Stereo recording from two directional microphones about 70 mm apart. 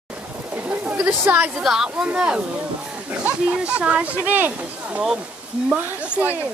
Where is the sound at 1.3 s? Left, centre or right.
Right.